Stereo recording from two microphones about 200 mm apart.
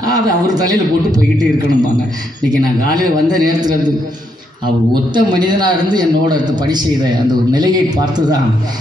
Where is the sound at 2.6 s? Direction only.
20° right (ahead or behind).